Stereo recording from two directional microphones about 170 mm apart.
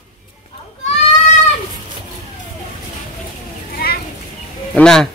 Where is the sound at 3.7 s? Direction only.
65° left (ahead or behind).